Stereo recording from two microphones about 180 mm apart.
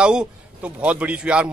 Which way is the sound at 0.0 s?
5° right (ahead or behind).